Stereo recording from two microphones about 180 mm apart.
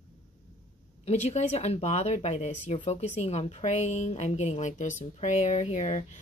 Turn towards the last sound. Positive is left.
turn(degrees=35)  # may be behind; listen again after turning